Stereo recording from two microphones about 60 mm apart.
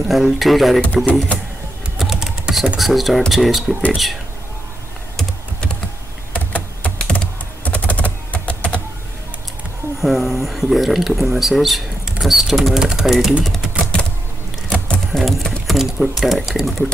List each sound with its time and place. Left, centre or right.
0.1 s speech: centre
2.0 s typing: centre
2.8 s speech: centre
5.1 s computer keyboard: centre
6.3 s typing: left
10.0 s speech: centre
14.7 s sewing machine: centre
15.6 s speech: centre